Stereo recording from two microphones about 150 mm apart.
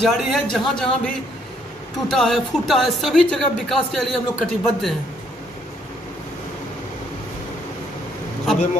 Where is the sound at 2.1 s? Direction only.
Centre (ahead or behind).